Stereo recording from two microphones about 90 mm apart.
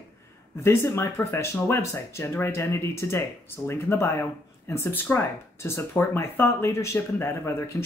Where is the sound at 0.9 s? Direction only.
30° left (ahead or behind).